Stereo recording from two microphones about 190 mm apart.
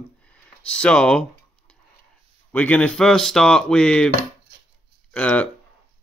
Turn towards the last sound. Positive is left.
turn(degrees=5)  # may be behind; listen again after turning